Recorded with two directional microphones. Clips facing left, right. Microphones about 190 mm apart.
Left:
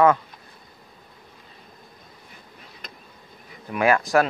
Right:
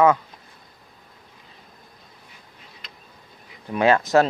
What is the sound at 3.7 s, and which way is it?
Speech, 25° right (ahead or behind).